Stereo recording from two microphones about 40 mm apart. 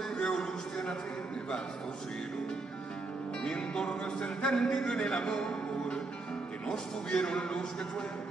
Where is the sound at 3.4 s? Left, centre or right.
Centre.